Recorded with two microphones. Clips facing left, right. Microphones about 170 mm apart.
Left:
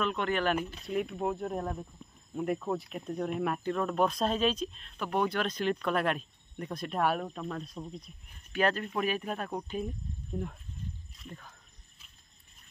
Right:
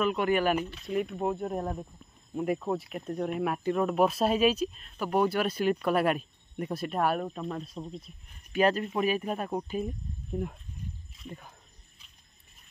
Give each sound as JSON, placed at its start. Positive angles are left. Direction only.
{"t": 0.0, "sound": "speech", "side_deg": -10}